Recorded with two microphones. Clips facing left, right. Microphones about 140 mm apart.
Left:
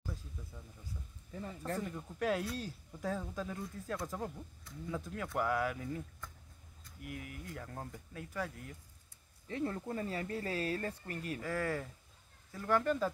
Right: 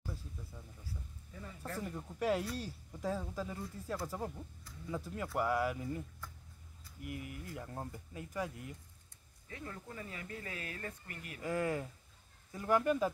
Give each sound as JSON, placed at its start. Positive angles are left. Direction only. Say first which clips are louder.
{"t": 1.3, "sound": "speech", "louder": "left 6 dB", "side_deg": 40}
{"t": 1.8, "sound": "speech", "louder": "left 1 dB", "side_deg": -5}
{"t": 9.5, "sound": "speech", "louder": "left 10 dB", "side_deg": 35}
{"t": 11.4, "sound": "speech", "louder": "right 3 dB", "side_deg": -15}